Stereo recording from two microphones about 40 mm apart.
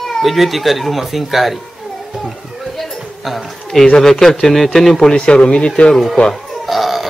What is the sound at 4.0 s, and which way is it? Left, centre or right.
A man's voice, centre.